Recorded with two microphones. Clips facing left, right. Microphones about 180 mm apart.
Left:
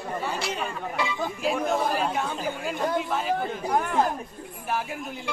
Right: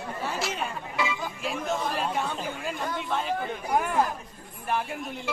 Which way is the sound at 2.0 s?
Centre (ahead or behind).